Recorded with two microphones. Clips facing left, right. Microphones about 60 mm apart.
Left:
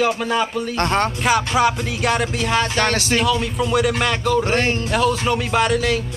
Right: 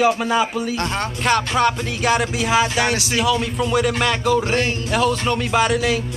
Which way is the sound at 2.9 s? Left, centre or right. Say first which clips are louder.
Left 2 dB; left.